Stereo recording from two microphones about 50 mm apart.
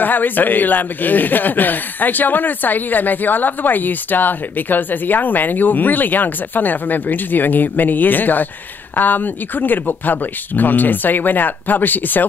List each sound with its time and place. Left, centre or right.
0.0 s speech: left